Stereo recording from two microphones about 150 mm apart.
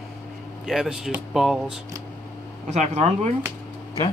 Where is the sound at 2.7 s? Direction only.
50° right (ahead or behind).